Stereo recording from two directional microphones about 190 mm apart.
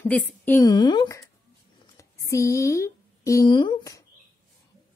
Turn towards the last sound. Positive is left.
turn(degrees=20)  # may be behind; listen again after turning